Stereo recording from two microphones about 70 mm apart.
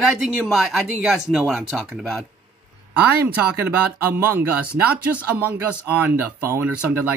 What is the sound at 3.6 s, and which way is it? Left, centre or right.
Speech, right.